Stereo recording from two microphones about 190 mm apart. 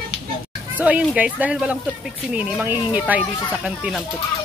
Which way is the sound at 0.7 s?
5° right (ahead or behind).